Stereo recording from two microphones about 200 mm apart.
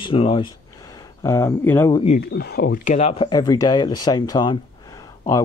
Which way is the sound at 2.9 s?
30° left (ahead or behind).